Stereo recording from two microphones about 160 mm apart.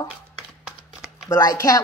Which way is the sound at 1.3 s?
20° left (ahead or behind).